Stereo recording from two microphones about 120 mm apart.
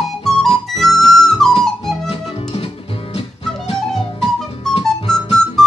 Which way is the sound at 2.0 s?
50° left (ahead or behind).